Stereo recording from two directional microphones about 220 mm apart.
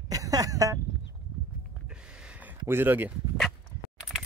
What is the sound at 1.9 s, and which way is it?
Dog, 5° right (ahead or behind).